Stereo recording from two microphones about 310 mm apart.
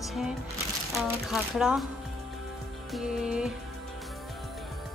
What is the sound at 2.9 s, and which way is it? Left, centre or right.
Speech, centre.